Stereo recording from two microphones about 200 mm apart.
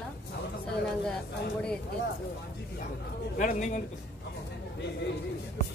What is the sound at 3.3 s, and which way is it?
Speech, 45° left (ahead or behind).